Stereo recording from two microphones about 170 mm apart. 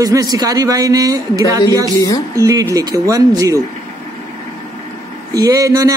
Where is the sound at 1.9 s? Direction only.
20° left (ahead or behind).